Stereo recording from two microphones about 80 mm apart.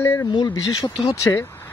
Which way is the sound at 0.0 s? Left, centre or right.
Left.